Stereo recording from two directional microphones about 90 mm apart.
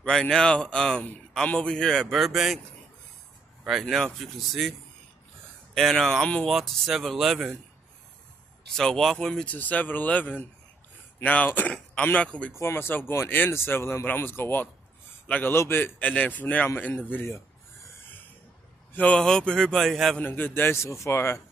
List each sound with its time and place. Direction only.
0.0 s a man's voice: 10° left (ahead or behind)
3.8 s speech: 5° left (ahead or behind)
5.8 s speech: 5° left (ahead or behind)
8.7 s speech: 5° left (ahead or behind)
9.3 s a man's voice: 15° left (ahead or behind)
12.5 s a man's voice: 30° left (ahead or behind)
15.5 s speech: 30° left (ahead or behind)
15.8 s speech: 15° left (ahead or behind)
18.9 s a man's voice: 10° left (ahead or behind)
20.2 s speech: 20° left (ahead or behind)